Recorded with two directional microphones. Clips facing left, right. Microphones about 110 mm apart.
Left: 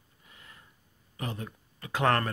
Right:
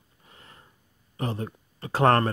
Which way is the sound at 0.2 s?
35° right (ahead or behind).